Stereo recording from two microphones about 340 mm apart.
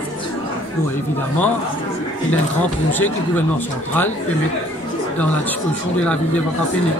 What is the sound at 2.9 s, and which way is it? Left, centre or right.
Speech, centre.